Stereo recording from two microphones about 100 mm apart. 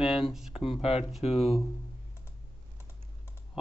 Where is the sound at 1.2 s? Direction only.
90° left.